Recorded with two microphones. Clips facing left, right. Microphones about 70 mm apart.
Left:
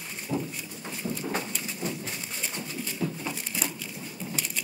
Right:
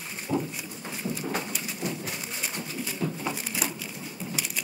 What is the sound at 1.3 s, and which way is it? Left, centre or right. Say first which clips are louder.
Bird: even; centre.